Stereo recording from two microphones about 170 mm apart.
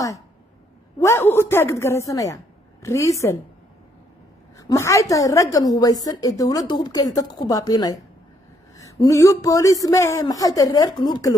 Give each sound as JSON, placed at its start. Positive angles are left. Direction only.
{"t": 0.9, "sound": "a woman's voice", "side_deg": 15}
{"t": 4.6, "sound": "a woman's voice", "side_deg": 20}